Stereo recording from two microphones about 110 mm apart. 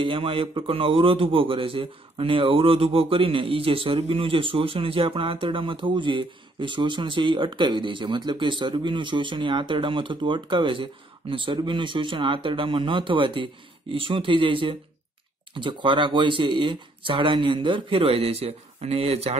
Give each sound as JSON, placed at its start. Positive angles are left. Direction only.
{"t": 0.0, "sound": "a man's voice", "side_deg": -55}